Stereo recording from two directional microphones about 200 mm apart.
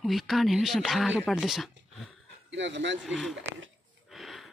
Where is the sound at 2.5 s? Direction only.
65° right (ahead or behind).